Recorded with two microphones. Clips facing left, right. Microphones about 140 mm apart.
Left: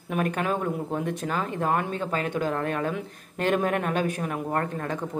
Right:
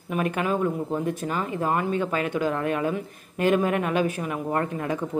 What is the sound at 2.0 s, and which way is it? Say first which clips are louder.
Speech: right 2 dB; 40° left (ahead or behind).